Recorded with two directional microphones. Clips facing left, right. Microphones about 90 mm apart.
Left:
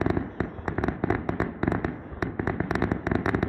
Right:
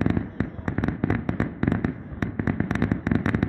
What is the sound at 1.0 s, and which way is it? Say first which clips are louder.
Fireworks: right 1 dB; 20° left (ahead or behind).